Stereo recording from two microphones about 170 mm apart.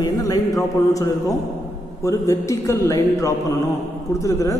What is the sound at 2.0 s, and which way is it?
A man's voice, 15° left (ahead or behind).